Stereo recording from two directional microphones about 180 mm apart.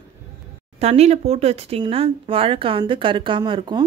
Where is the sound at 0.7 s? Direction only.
35° right (ahead or behind).